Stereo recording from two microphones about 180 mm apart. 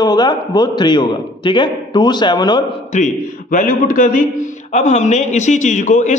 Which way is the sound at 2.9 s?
45° left (ahead or behind).